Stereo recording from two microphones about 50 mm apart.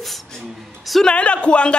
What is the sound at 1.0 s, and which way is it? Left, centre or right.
Speech, left.